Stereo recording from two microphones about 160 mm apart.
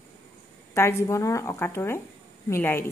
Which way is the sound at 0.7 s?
15° left (ahead or behind).